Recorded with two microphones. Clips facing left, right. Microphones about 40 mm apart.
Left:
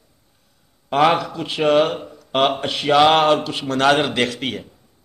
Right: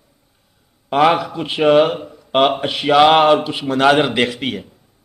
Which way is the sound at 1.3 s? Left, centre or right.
Centre.